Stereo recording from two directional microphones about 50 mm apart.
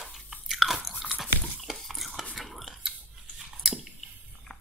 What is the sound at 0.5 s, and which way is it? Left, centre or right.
Chewing, centre.